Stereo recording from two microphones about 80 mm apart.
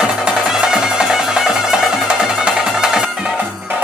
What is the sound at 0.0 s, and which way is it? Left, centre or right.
Music, centre.